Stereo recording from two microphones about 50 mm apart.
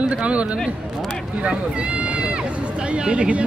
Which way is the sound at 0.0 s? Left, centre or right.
Right.